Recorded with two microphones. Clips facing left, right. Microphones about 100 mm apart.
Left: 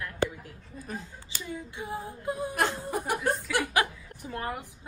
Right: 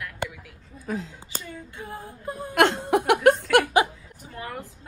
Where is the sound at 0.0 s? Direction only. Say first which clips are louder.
Left 3 dB; 35° left (ahead or behind).